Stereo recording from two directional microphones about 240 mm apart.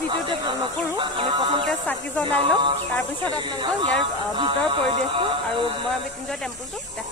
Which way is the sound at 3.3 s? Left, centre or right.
Centre.